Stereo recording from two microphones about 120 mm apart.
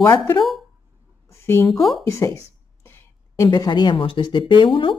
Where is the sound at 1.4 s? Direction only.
20° left (ahead or behind).